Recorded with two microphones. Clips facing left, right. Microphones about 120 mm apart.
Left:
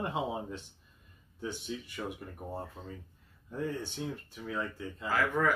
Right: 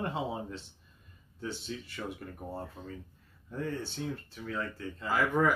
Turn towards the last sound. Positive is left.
turn(degrees=-15)  # may be behind; listen again after turning